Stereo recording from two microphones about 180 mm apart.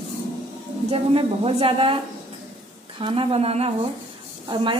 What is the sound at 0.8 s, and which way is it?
A woman's voice, 35° right (ahead or behind).